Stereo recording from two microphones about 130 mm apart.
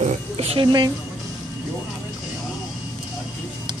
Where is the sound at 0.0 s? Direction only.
50° right (ahead or behind).